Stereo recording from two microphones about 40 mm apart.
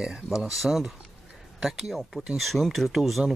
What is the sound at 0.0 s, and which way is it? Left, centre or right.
Speech, centre.